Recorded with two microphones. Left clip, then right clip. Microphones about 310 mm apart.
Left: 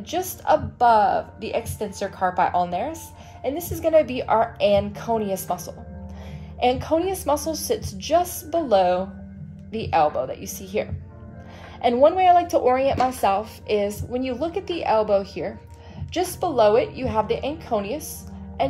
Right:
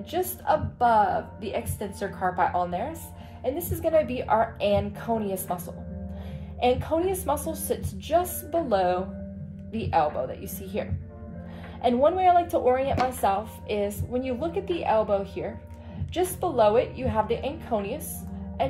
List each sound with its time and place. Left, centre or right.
0.1 s speech: left
6.6 s speech: left